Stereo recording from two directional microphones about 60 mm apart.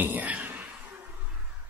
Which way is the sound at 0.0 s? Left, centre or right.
Right.